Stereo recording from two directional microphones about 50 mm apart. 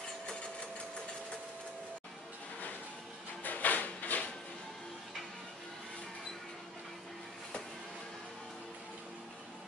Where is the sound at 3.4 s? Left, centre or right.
Left.